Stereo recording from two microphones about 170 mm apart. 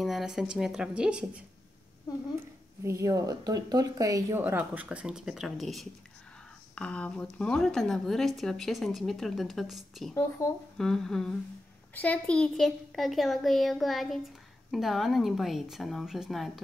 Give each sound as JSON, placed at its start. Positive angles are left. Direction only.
{"t": 0.0, "sound": "a woman's voice", "side_deg": 0}
{"t": 2.8, "sound": "a woman's voice", "side_deg": -20}
{"t": 10.1, "sound": "speech", "side_deg": 15}
{"t": 10.8, "sound": "a woman's voice", "side_deg": 0}